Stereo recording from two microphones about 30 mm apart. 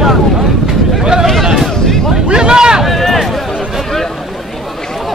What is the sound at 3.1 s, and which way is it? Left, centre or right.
Music, centre.